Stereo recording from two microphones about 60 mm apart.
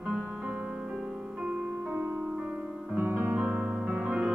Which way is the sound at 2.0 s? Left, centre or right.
Right.